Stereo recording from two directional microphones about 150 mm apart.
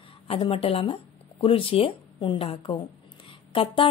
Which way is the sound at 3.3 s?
35° left (ahead or behind).